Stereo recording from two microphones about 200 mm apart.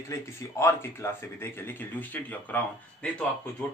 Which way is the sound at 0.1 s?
15° left (ahead or behind).